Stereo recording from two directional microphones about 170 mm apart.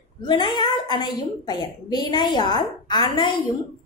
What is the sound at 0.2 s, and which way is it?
A woman's voice, 25° left (ahead or behind).